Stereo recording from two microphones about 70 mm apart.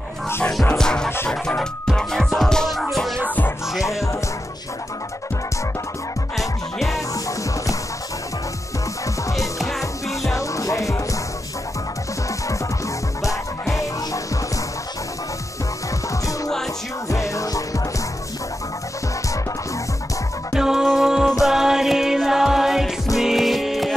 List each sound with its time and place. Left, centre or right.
0.7 s music: centre
3.3 s music: left
3.8 s music: left
9.0 s music: left
9.6 s music: centre
10.3 s music: left
13.2 s music: left
17.1 s music: left
20.5 s music: centre